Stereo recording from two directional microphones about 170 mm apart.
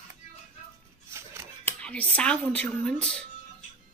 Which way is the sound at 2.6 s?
5° left (ahead or behind).